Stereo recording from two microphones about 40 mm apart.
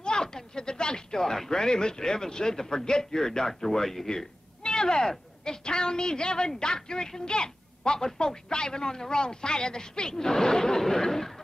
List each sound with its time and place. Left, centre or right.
0.0 s a woman's voice: centre